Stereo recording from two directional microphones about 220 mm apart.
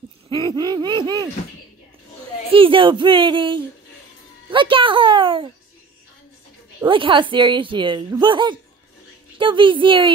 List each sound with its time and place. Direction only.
0.5 s speech: 20° right (ahead or behind)
2.5 s speech: 25° right (ahead or behind)
6.9 s speech: 20° right (ahead or behind)